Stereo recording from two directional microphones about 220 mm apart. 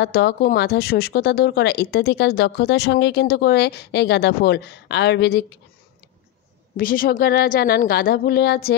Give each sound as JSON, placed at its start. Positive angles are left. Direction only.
{"t": 0.0, "sound": "speech", "side_deg": 45}
{"t": 6.8, "sound": "speech", "side_deg": 40}